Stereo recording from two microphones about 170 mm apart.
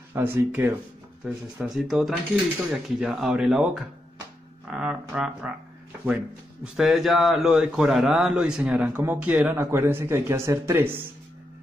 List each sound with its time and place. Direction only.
0.1 s a man's voice: 15° right (ahead or behind)
1.2 s speech: 5° right (ahead or behind)
6.6 s a man's voice: centre (ahead or behind)